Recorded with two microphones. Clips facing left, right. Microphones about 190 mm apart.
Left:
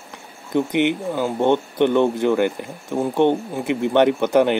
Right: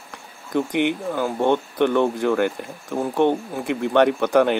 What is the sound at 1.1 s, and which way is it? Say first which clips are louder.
Speech: left 1 dB; 15° left (ahead or behind).